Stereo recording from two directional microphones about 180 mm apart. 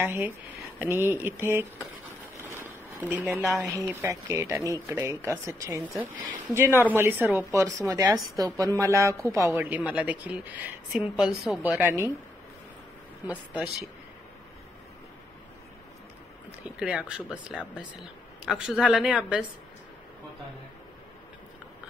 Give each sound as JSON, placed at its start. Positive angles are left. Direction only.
{"t": 0.0, "sound": "a woman's voice", "side_deg": -10}
{"t": 2.5, "sound": "a sound", "side_deg": -15}
{"t": 3.4, "sound": "a woman's voice", "side_deg": 0}
{"t": 3.9, "sound": "a woman's voice", "side_deg": -15}
{"t": 16.8, "sound": "a woman's voice", "side_deg": -5}